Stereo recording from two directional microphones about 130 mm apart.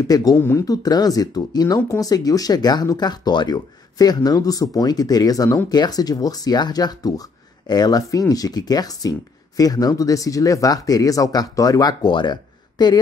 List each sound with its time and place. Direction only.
0.1 s speech: 30° left (ahead or behind)